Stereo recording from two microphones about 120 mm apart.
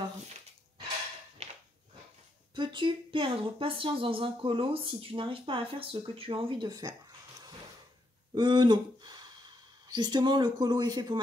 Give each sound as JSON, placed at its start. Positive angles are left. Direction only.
{"t": 2.5, "sound": "speech", "side_deg": -40}
{"t": 6.7, "sound": "speech", "side_deg": -30}
{"t": 8.4, "sound": "speech", "side_deg": -40}